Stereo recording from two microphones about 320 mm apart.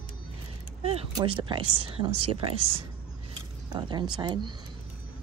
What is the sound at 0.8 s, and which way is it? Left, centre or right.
Speech, centre.